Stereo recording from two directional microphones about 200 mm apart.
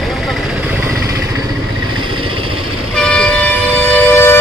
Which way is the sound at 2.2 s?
25° right (ahead or behind).